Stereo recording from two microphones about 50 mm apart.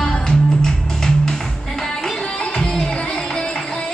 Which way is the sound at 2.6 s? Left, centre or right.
Centre.